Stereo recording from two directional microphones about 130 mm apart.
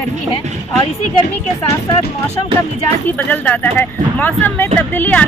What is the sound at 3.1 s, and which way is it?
Speech, 10° left (ahead or behind).